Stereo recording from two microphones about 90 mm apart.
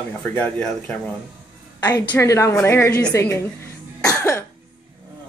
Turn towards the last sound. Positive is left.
turn(degrees=30)  # may be behind; listen again after turning